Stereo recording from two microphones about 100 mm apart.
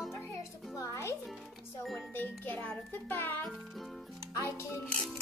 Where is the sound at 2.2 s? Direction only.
15° left (ahead or behind).